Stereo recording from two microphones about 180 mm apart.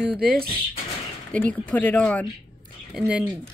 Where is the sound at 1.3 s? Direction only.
10° left (ahead or behind).